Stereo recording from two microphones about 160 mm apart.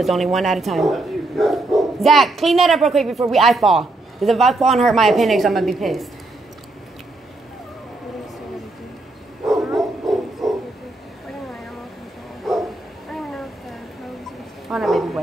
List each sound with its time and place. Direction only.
0.0 s speech: centre (ahead or behind)
9.5 s bow-wow: centre (ahead or behind)
13.1 s a sound: centre (ahead or behind)